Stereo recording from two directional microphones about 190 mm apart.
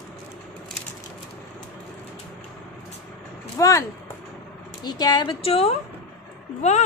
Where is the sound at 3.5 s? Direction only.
20° left (ahead or behind).